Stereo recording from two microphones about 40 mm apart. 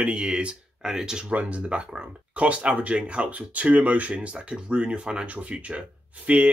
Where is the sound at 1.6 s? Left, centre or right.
Right.